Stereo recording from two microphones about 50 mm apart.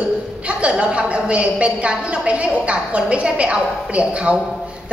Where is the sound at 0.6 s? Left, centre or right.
Right.